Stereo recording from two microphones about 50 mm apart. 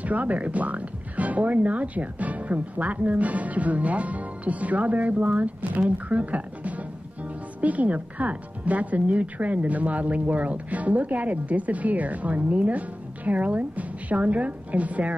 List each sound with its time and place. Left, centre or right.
0.0 s speech: right